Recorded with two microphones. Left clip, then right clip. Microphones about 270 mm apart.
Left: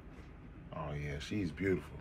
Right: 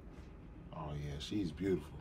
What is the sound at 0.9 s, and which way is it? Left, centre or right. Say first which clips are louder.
Speech: right 2 dB; centre.